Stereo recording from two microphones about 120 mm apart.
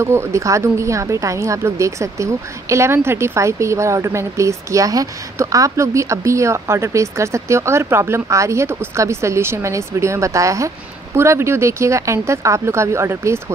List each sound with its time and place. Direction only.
0.0 s a woman's voice: 25° right (ahead or behind)